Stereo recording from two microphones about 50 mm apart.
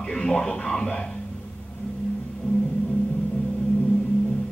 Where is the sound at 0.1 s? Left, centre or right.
Centre.